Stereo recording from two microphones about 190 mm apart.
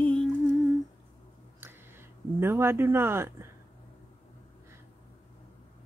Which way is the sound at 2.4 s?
15° right (ahead or behind).